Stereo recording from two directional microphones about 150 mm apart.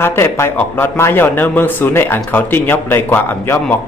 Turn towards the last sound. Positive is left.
turn(degrees=15)  # may be behind; listen again after turning